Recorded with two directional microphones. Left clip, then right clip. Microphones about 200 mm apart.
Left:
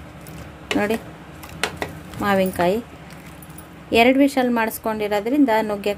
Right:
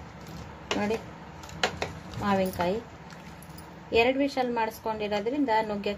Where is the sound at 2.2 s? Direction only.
40° left (ahead or behind).